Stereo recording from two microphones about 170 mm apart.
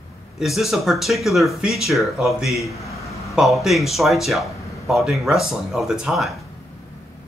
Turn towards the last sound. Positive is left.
turn(degrees=0)  # may be behind; listen again after turning